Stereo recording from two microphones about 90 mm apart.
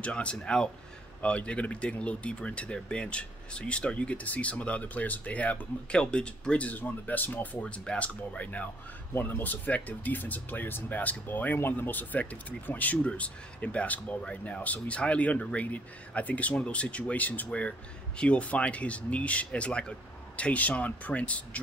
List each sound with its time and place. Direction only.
0.0 s speech: 15° left (ahead or behind)